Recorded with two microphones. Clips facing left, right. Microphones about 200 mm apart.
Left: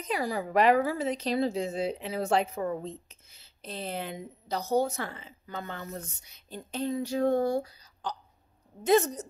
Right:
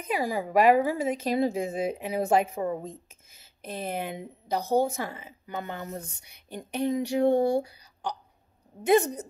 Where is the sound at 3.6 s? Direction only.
10° right (ahead or behind).